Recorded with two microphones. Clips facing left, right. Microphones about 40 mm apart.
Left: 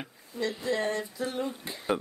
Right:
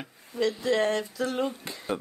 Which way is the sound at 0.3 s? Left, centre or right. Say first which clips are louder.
Right 5 dB; right.